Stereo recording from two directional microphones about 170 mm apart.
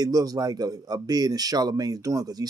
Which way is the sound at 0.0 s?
20° right (ahead or behind).